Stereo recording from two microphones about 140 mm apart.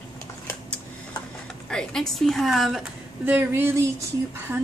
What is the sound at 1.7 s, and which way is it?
A woman's voice, 5° left (ahead or behind).